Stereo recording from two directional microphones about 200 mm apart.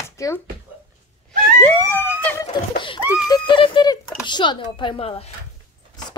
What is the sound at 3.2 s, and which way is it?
Speech, 25° left (ahead or behind).